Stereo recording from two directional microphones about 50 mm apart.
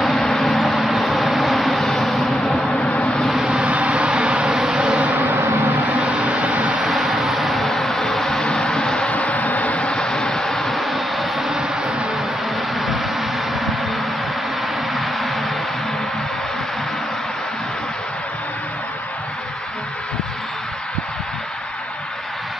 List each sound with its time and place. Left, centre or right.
0.2 s vehicle: centre
2.8 s vehicle: left
3.3 s vehicle: centre
3.7 s vehicle: right
4.1 s a sound: centre
5.9 s vehicle: right
6.9 s vehicle: centre; by 9.9 s left
9.9 s vehicle: centre
10.4 s a sound: centre
12.7 s vehicle: centre
15.0 s vehicle: centre